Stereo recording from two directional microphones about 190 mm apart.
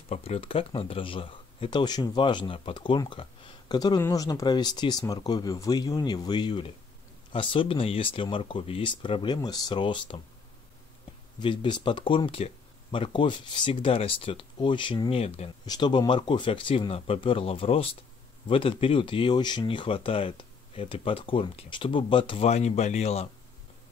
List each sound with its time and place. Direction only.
0.1 s speech: 30° left (ahead or behind)
11.3 s speech: 25° left (ahead or behind)
15.6 s speech: 20° left (ahead or behind)